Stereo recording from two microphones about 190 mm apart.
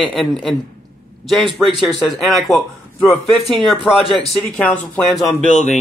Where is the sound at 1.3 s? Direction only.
Centre (ahead or behind).